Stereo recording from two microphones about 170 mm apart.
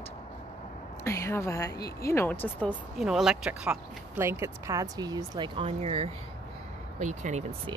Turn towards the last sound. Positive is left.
turn(degrees=-45)  # may be behind; listen again after turning